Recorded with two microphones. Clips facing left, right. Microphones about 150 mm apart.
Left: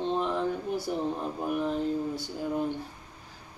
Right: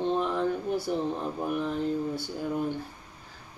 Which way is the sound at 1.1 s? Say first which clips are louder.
Even; 15° left (ahead or behind).